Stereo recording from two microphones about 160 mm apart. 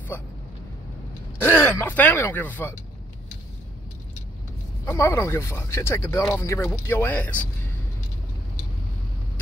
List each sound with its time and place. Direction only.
1.4 s speech: 15° left (ahead or behind)
4.8 s speech: 15° left (ahead or behind)